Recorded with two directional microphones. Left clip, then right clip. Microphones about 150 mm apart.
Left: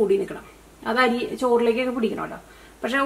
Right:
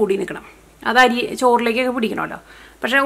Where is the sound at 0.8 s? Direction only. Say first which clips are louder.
Right 7 dB; 30° right (ahead or behind).